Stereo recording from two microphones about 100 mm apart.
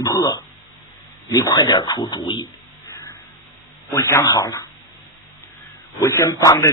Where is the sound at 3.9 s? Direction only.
30° left (ahead or behind).